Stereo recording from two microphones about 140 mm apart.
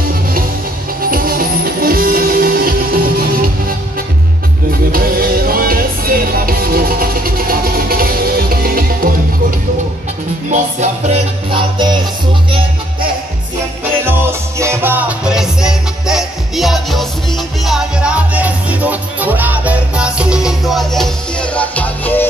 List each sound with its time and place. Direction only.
1.0 s music: 90° right
4.9 s music: 90° right
10.5 s music: 55° right (ahead or behind)
11.5 s music: 30° right (ahead or behind)
14.0 s music: 20° right (ahead or behind); by 22.3 s 15° left (ahead or behind)